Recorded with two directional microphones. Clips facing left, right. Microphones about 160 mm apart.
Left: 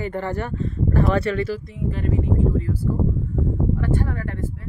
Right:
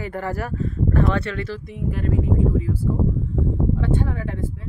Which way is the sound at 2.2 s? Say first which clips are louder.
Right 1 dB; centre (ahead or behind).